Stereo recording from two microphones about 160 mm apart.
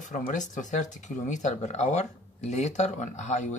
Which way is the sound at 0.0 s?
50° left (ahead or behind).